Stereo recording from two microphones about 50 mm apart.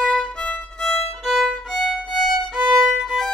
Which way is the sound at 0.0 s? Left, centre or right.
Centre.